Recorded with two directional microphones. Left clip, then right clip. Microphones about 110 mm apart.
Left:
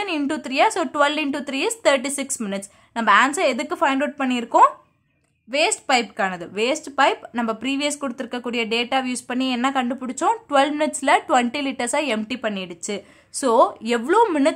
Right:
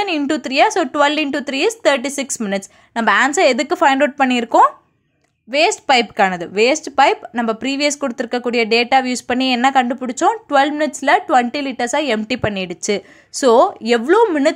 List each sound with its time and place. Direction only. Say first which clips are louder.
0.3 s speech: right 4 dB; 30° right (ahead or behind)
5.5 s speech: right 5 dB; 25° right (ahead or behind)
5.9 s speech: right 7 dB; 45° right (ahead or behind); by 12.2 s 20° right (ahead or behind)
12.3 s speech: right 6 dB; 40° right (ahead or behind); by 14.2 s 20° right (ahead or behind)